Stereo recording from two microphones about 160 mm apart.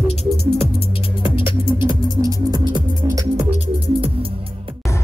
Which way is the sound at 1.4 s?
15° right (ahead or behind).